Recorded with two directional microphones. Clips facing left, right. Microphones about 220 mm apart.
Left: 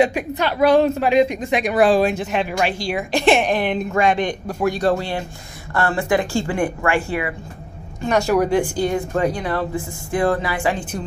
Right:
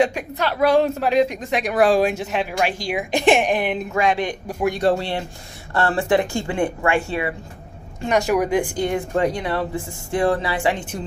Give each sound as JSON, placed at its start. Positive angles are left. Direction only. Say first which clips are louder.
{"t": 0.3, "sound": "a woman's voice", "louder": "left 2 dB", "side_deg": 0}
{"t": 1.9, "sound": "speech", "louder": "left 1 dB", "side_deg": -10}
{"t": 2.8, "sound": "speech", "louder": "left 1 dB", "side_deg": -15}
{"t": 4.5, "sound": "speech", "louder": "right 1 dB", "side_deg": -20}